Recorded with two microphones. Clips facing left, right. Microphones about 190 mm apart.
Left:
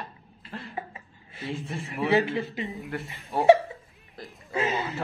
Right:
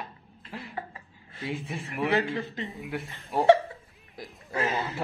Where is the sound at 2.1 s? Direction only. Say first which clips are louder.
Left 5 dB; 15° left (ahead or behind).